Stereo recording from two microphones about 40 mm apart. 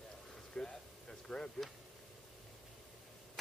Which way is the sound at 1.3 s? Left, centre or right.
Centre.